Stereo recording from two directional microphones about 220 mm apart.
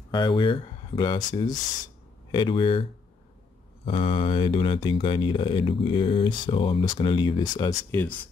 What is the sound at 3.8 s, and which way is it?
Speech, 25° left (ahead or behind).